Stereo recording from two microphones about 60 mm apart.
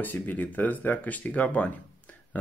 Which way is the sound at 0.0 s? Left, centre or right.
Left.